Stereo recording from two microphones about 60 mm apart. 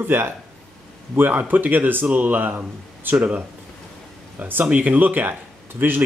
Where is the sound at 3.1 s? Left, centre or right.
Right.